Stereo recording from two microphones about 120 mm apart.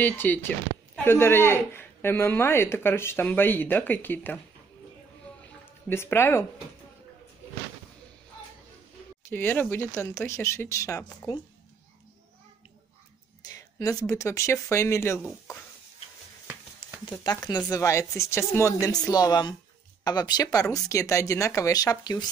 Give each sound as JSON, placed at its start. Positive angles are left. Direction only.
{"t": 0.0, "sound": "speech", "side_deg": 15}
{"t": 5.9, "sound": "speech", "side_deg": 20}
{"t": 9.3, "sound": "speech", "side_deg": 15}
{"t": 13.5, "sound": "speech", "side_deg": 30}
{"t": 17.2, "sound": "speech", "side_deg": 35}
{"t": 19.0, "sound": "speech", "side_deg": 35}